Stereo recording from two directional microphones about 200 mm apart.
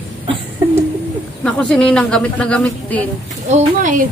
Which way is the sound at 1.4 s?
5° left (ahead or behind).